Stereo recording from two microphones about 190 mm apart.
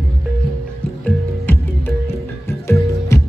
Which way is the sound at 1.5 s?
10° left (ahead or behind).